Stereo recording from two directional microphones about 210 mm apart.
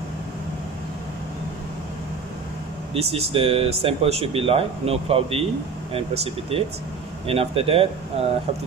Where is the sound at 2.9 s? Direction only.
30° right (ahead or behind).